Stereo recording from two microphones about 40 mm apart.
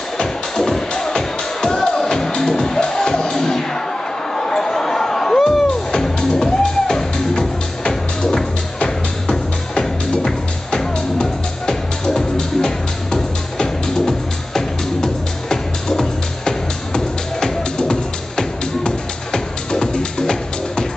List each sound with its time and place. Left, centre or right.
0.2 s music: centre
8.7 s music: left